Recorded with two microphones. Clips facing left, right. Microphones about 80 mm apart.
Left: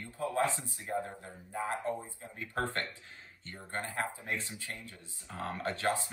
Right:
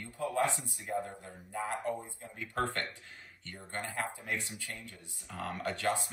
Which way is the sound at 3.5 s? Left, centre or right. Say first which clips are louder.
Left 1 dB; left.